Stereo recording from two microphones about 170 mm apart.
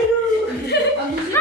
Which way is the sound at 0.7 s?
85° left.